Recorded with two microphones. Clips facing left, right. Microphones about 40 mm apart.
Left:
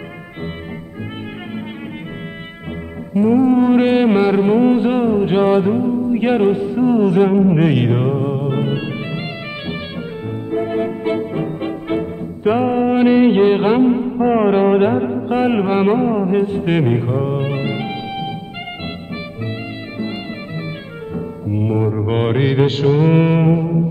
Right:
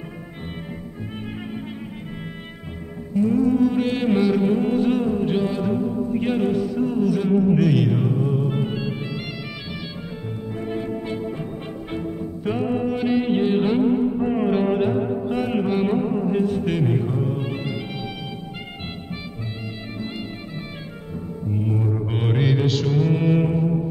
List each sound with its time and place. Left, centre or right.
3.2 s a sound: left
10.5 s music: left
20.0 s music: left